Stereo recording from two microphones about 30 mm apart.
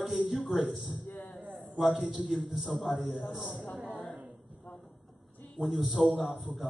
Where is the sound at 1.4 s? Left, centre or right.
Right.